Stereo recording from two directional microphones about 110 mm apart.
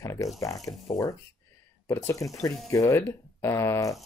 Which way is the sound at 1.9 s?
30° left (ahead or behind).